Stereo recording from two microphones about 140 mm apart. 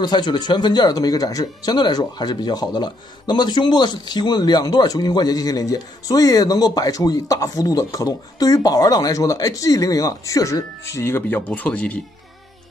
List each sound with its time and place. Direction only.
0.0 s speech: 30° left (ahead or behind); by 12.0 s 10° left (ahead or behind)